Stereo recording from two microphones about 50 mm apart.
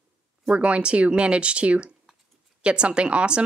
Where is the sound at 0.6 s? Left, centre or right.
Right.